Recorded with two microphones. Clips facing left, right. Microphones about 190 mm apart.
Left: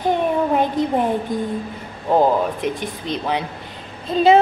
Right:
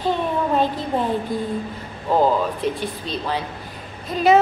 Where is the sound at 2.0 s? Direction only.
20° left (ahead or behind).